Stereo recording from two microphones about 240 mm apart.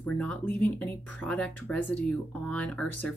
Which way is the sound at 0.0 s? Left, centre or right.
Centre.